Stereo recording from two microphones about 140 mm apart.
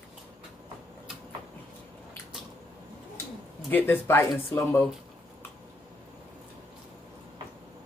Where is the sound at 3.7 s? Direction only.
15° left (ahead or behind).